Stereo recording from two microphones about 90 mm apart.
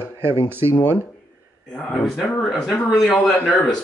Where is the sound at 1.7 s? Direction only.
10° left (ahead or behind).